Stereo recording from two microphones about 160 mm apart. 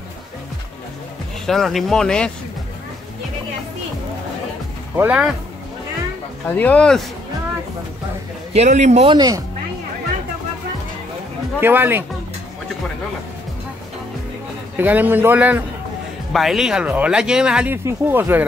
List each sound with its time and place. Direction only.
1.4 s speech: centre (ahead or behind)
4.9 s a man's voice: 10° right (ahead or behind)
6.4 s speech: 10° left (ahead or behind)
8.5 s a man's voice: 45° right (ahead or behind)
9.1 s speech: 25° right (ahead or behind)
11.6 s a man's voice: 15° right (ahead or behind)
14.8 s a man's voice: 10° right (ahead or behind)